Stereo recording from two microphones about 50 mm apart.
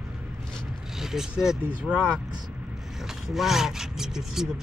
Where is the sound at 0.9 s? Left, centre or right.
Centre.